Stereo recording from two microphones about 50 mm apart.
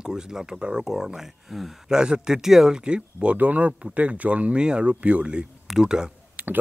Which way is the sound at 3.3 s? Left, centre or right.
Right.